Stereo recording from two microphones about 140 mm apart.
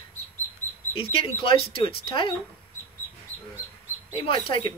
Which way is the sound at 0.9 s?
40° left (ahead or behind).